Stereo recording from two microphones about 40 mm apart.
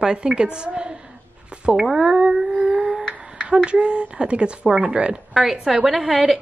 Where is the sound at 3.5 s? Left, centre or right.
Right.